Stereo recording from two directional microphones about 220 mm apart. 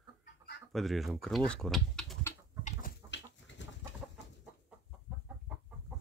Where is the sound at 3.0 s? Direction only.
55° left (ahead or behind).